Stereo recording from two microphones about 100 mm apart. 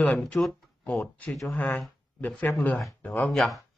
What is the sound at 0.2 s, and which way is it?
Speech, 5° left (ahead or behind).